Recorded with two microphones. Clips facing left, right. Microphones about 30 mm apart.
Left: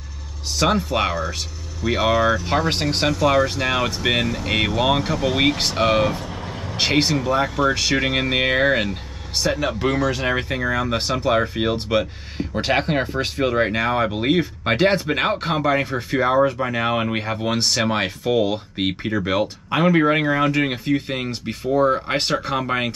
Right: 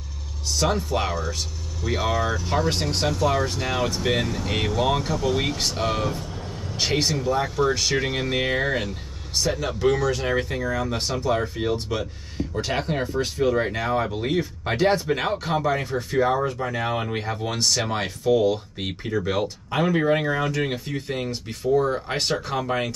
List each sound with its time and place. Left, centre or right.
0.5 s speech: left; by 2.4 s centre
2.7 s speech: left
6.2 s vehicle: left
6.9 s speech: left